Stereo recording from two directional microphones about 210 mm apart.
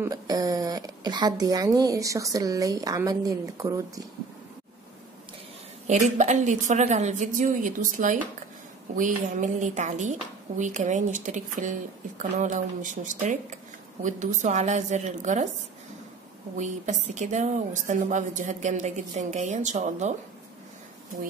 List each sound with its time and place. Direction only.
0.0 s a woman's voice: 15° right (ahead or behind)
5.9 s a woman's voice: 35° right (ahead or behind)
16.5 s a woman's voice: 35° right (ahead or behind)